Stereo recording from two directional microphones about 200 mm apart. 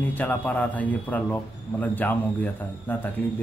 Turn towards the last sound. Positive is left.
turn(degrees=10)  # may be behind; listen again after turning